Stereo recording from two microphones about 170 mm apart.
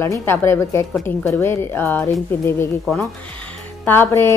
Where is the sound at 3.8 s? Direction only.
15° left (ahead or behind).